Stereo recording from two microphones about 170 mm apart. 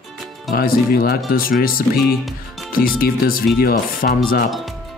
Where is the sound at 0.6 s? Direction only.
60° left (ahead or behind).